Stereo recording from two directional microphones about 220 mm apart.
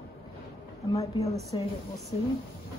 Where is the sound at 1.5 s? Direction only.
20° left (ahead or behind).